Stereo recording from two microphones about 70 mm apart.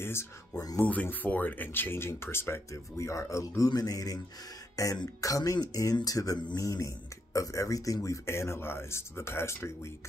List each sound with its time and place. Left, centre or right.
0.0 s a sound: left
0.7 s speech: left
3.6 s speech: left
4.8 s speech: left